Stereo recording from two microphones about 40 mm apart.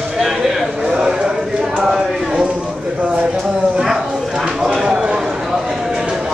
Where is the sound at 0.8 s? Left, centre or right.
Centre.